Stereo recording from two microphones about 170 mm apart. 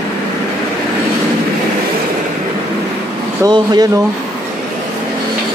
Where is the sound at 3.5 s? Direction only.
25° right (ahead or behind).